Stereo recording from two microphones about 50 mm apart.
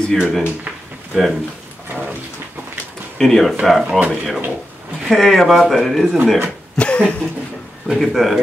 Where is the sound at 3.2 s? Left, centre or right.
Centre.